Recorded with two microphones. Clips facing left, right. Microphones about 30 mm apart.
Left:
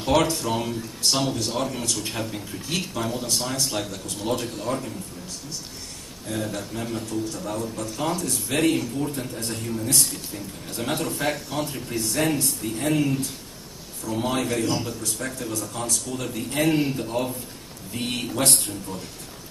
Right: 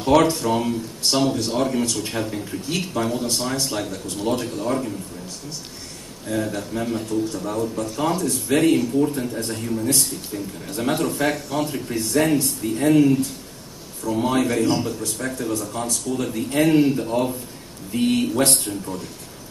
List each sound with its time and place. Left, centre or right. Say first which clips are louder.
0.0 s a man's voice: right 5 dB; centre
6.2 s a man's voice: right 4 dB; centre